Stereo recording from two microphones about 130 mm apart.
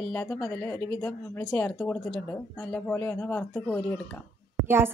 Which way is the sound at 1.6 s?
10° left (ahead or behind).